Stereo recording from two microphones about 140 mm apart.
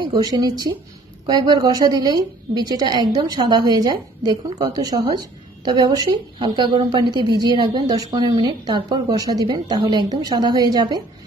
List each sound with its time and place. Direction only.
0.0 s a woman's voice: 30° right (ahead or behind)